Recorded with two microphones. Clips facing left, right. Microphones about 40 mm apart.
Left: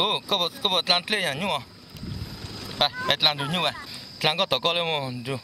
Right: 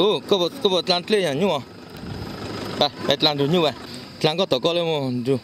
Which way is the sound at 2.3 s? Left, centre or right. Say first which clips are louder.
Right 8 dB; right.